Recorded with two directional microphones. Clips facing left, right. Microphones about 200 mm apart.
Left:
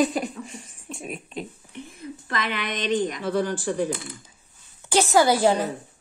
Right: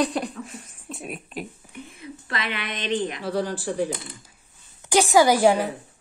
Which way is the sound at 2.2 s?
45° left (ahead or behind).